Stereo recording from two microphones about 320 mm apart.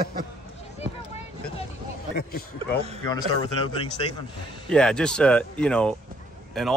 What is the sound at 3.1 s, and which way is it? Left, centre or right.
Speech, centre.